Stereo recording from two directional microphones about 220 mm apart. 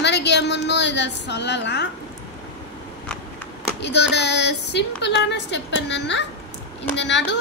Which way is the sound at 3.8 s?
50° left (ahead or behind).